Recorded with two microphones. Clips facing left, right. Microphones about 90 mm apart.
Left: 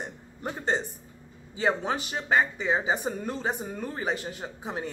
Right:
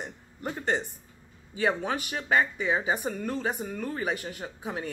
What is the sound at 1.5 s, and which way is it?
A man's voice, 25° left (ahead or behind).